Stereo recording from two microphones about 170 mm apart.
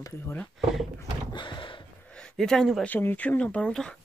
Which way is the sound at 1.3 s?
30° left (ahead or behind).